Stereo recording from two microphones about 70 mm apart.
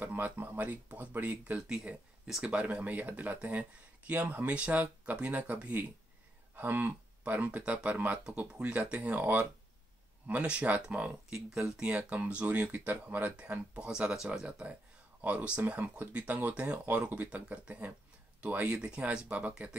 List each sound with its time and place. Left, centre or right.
0.0 s speech: right
1.8 s speech: centre